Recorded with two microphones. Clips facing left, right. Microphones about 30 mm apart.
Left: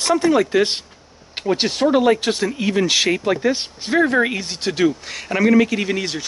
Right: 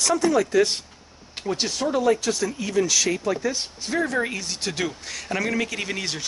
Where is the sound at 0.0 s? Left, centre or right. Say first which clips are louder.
Left 4 dB; left.